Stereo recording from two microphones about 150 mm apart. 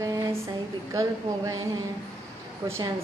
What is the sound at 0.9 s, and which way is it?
Speech, 20° right (ahead or behind).